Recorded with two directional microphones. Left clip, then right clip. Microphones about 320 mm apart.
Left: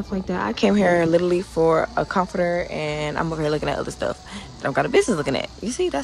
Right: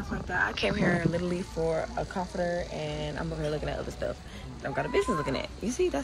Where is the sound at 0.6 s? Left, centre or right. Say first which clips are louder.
Left 10 dB; centre.